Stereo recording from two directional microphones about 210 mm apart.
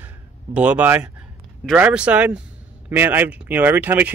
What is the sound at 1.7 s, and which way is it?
Speech, 5° right (ahead or behind).